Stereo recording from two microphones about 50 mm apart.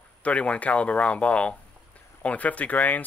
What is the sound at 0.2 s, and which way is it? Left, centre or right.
Speech, left.